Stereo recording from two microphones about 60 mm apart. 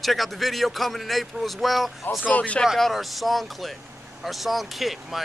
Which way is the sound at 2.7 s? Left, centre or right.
Centre.